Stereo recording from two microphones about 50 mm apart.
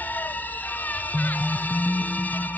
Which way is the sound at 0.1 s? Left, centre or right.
Left.